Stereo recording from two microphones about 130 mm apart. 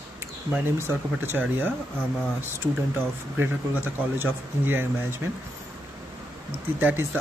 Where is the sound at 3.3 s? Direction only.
15° right (ahead or behind).